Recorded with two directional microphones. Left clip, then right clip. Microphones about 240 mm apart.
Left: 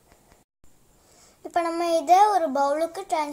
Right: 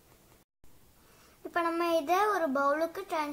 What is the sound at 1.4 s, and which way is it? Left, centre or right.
A child's voice, centre.